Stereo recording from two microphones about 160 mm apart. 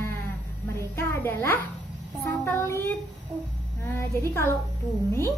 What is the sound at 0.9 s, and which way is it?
A woman's voice, 15° left (ahead or behind).